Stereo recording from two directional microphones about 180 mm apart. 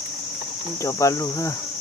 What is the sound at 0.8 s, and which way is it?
Cricket, 15° left (ahead or behind).